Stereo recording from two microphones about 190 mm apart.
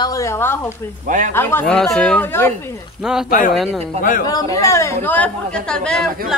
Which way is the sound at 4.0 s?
45° left (ahead or behind).